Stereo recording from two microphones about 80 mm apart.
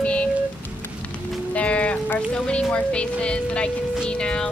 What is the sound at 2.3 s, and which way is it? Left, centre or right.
Speech, centre.